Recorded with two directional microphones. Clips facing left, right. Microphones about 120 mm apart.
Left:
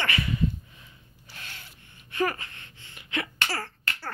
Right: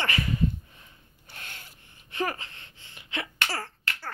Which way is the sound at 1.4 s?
45° right (ahead or behind).